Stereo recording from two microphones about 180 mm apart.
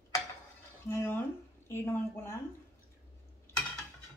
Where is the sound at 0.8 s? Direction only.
15° left (ahead or behind).